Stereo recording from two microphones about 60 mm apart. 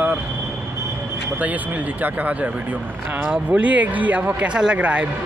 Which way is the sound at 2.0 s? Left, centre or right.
Right.